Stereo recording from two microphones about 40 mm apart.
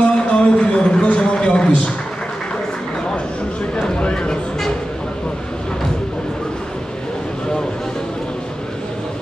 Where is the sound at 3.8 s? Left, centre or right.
Left.